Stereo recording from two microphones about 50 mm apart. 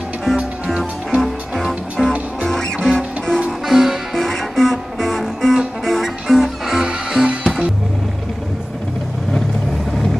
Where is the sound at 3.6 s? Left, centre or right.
Centre.